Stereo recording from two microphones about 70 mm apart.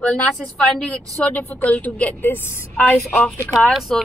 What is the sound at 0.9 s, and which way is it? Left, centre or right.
A woman's voice, left.